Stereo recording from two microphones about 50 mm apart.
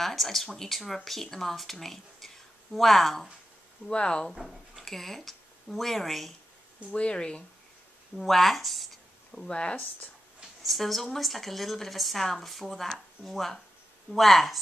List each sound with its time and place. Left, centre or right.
0.0 s speech: centre
3.9 s speech: centre
4.4 s speech: centre
6.9 s speech: centre
8.2 s speech: centre
10.6 s speech: centre